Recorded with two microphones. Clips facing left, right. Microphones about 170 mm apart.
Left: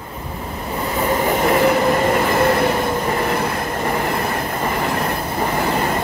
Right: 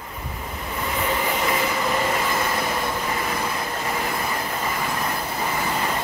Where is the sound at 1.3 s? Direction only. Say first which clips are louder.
Left 8 dB; 50° left (ahead or behind).